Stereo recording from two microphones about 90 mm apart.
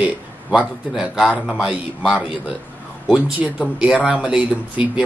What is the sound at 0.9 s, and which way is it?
A man's voice, 5° right (ahead or behind).